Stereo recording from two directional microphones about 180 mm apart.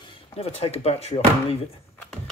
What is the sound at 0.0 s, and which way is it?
Speech, 35° left (ahead or behind).